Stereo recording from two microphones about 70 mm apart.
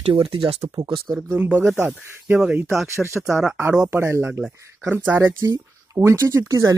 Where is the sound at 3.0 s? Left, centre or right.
Centre.